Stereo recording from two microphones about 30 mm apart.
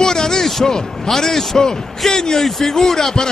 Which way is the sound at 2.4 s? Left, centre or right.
Centre.